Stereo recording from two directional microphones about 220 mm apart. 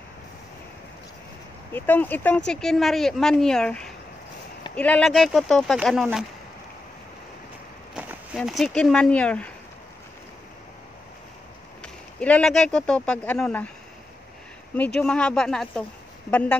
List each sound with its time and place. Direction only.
1.7 s speech: 10° left (ahead or behind)
7.9 s speech: 5° right (ahead or behind)
11.8 s speech: 5° left (ahead or behind)
15.0 s speech: 5° left (ahead or behind)